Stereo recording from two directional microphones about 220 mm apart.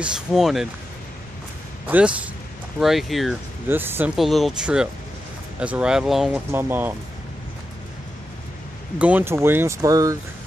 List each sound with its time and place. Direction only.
0.0 s speech: centre (ahead or behind)
1.9 s speech: 5° right (ahead or behind)
8.9 s speech: 5° right (ahead or behind)